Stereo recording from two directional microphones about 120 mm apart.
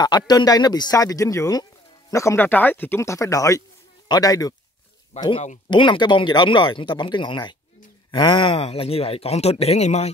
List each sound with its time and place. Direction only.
0.0 s speech: 35° left (ahead or behind)
5.1 s speech: 70° left (ahead or behind)
5.7 s speech: 40° left (ahead or behind); by 10.1 s 65° left (ahead or behind)